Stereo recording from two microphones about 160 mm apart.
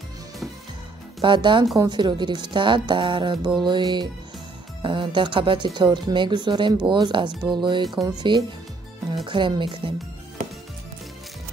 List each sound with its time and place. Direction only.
1.2 s a woman's voice: 30° right (ahead or behind)
7.9 s speech: centre (ahead or behind)
9.1 s speech: 30° right (ahead or behind)